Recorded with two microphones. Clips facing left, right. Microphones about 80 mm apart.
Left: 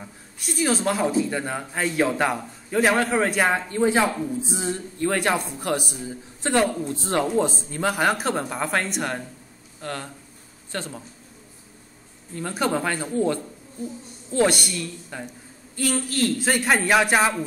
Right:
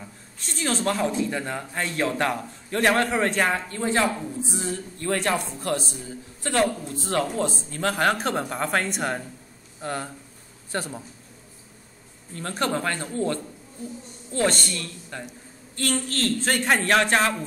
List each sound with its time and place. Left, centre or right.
0.0 s a man's voice: centre
3.5 s a man's voice: centre
7.7 s speech: centre
9.8 s a man's voice: centre
12.4 s a man's voice: centre